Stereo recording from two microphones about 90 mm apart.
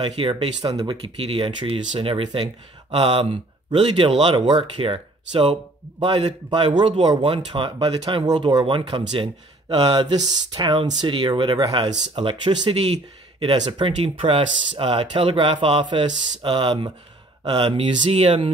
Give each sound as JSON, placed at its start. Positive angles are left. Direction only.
{"t": 0.0, "sound": "speech", "side_deg": -75}
{"t": 8.3, "sound": "speech", "side_deg": -55}
{"t": 17.6, "sound": "speech", "side_deg": -90}